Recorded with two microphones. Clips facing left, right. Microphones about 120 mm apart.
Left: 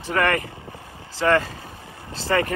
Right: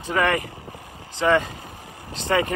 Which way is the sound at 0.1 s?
10° right (ahead or behind).